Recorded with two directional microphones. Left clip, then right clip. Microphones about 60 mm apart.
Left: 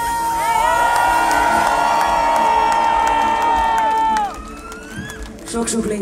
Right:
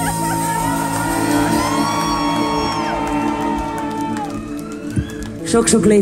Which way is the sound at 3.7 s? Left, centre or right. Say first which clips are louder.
Left 8 dB; left.